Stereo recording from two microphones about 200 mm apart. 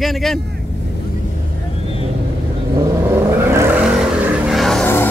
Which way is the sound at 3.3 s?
10° right (ahead or behind).